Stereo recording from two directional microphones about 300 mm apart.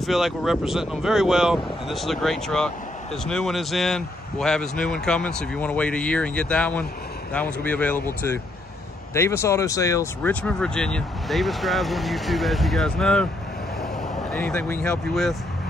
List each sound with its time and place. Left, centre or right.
0.0 s speech: centre
14.3 s speech: centre